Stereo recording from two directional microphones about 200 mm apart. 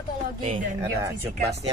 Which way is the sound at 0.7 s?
10° right (ahead or behind).